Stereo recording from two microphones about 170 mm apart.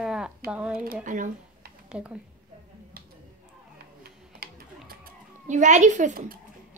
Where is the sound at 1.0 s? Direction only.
50° right (ahead or behind).